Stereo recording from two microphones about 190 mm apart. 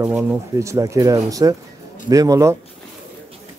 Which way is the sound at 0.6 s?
15° right (ahead or behind).